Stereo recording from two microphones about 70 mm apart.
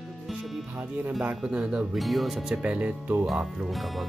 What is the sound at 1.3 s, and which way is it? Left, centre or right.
Speech, centre.